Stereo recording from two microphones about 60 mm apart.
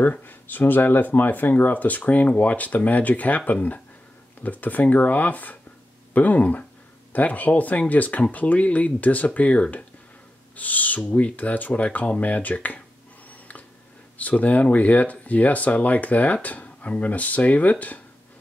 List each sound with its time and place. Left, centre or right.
0.0 s speech: left
13.3 s a sound: left
14.1 s speech: left